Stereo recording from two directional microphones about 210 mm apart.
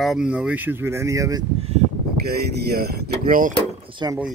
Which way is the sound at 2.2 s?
50° right (ahead or behind).